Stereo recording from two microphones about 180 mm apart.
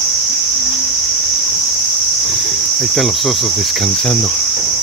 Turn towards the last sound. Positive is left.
turn(degrees=5)  # may be behind; listen again after turning